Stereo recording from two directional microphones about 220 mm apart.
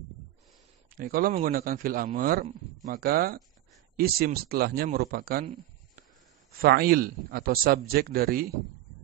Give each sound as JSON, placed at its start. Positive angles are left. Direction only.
{"t": 0.9, "sound": "a man's voice", "side_deg": -40}